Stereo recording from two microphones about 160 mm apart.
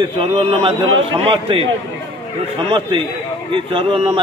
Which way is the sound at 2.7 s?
30° right (ahead or behind).